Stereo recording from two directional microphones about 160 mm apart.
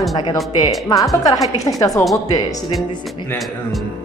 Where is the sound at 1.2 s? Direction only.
20° left (ahead or behind).